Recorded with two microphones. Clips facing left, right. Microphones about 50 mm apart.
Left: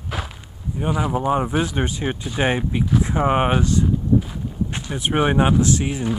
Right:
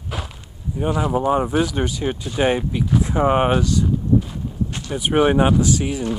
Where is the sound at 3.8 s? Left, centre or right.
Centre.